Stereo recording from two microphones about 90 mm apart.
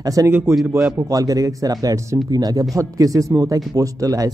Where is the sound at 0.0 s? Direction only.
40° right (ahead or behind).